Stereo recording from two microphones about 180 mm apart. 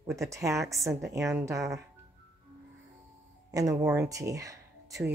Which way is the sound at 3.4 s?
20° right (ahead or behind).